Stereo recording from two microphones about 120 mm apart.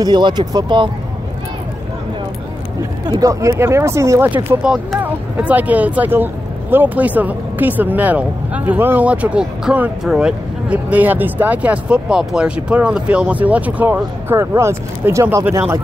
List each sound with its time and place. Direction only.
0.0 s speech: 40° right (ahead or behind)
3.1 s speech: 30° right (ahead or behind)
4.3 s speech: 10° right (ahead or behind)